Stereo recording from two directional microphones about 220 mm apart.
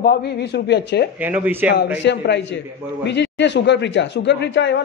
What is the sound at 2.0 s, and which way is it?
Speech, 50° left (ahead or behind).